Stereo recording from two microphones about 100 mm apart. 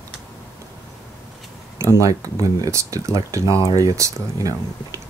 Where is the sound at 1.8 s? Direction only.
30° right (ahead or behind).